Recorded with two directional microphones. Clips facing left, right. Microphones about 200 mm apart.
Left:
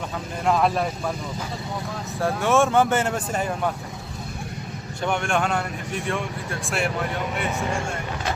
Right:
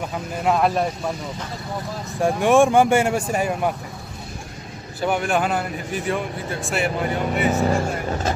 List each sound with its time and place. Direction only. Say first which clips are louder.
0.4 s speech: right 2 dB; 5° right (ahead or behind)
2.1 s speech: right 5 dB; 15° right (ahead or behind)
5.0 s speech: right 3 dB; 5° right (ahead or behind)
7.5 s speech: right 6 dB; 35° right (ahead or behind)